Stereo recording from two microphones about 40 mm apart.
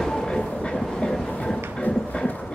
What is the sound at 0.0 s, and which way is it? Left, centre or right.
Train, centre.